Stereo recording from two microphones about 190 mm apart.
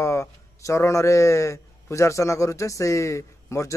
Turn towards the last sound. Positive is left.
turn(degrees=15)  # may be behind; listen again after turning